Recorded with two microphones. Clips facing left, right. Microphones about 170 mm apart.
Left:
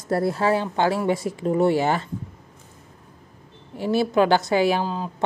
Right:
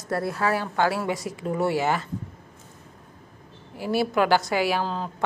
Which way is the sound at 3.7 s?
25° left (ahead or behind).